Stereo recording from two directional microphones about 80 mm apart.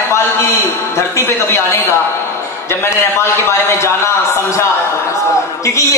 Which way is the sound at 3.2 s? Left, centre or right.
Left.